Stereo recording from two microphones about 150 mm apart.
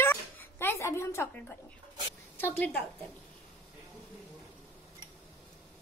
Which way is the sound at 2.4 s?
15° left (ahead or behind).